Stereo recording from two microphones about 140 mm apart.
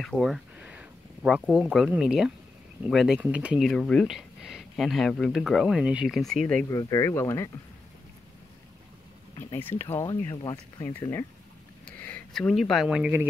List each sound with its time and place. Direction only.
0.0 s speech: centre (ahead or behind)
3.6 s speech: 5° left (ahead or behind)
6.7 s speech: 25° left (ahead or behind)
9.4 s speech: 15° left (ahead or behind)
10.3 s speech: 35° left (ahead or behind)
10.8 s speech: 15° left (ahead or behind)
11.8 s a sound: 10° left (ahead or behind)
12.4 s speech: 5° left (ahead or behind)